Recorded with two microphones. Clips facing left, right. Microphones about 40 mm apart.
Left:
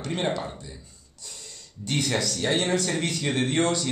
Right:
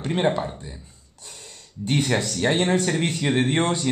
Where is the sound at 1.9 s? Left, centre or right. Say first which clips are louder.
Right 3 dB; right.